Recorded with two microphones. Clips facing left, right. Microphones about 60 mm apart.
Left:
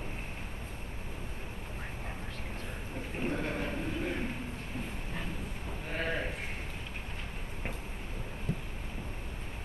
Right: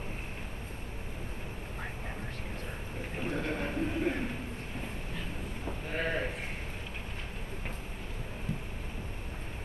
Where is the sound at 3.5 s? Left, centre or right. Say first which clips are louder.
Right 2 dB; right.